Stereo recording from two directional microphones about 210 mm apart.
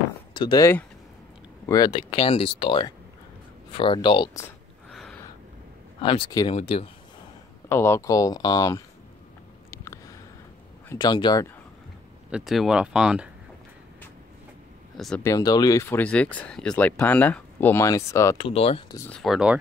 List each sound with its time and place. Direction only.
0.3 s speech: 20° left (ahead or behind)
5.9 s speech: 25° left (ahead or behind)
7.7 s speech: 10° left (ahead or behind)
10.9 s speech: 20° left (ahead or behind)
12.3 s speech: 5° right (ahead or behind)
15.0 s speech: centre (ahead or behind)
15.2 s speech: 15° left (ahead or behind)
18.5 s speech: 30° left (ahead or behind)
18.9 s speech: 5° left (ahead or behind)